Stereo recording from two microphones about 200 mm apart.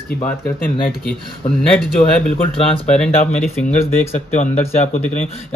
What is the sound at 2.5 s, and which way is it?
Speech, 25° left (ahead or behind).